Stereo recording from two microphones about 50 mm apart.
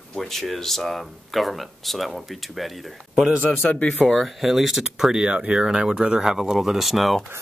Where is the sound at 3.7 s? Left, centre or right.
Left.